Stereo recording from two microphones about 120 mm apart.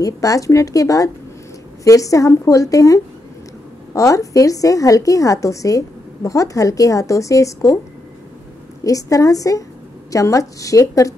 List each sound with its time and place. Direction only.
0.0 s a woman's voice: 30° left (ahead or behind)
8.8 s a woman's voice: 30° left (ahead or behind)